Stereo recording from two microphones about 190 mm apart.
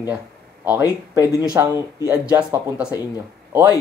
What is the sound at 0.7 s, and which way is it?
Speech, 10° right (ahead or behind).